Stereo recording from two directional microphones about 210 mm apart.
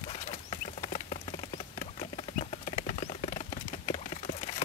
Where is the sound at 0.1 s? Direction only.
25° left (ahead or behind).